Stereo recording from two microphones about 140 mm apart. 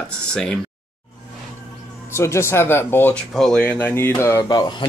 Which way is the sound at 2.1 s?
20° left (ahead or behind).